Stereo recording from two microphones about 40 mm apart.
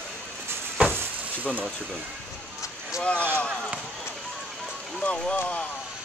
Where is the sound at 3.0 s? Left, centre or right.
Left.